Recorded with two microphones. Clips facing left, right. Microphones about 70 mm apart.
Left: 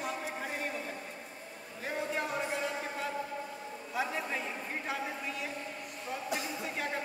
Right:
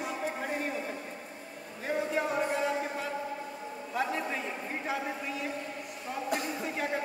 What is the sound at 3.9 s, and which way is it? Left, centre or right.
Speech, centre.